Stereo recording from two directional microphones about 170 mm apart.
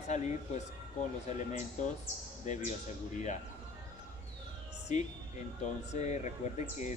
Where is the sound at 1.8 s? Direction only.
45° left (ahead or behind).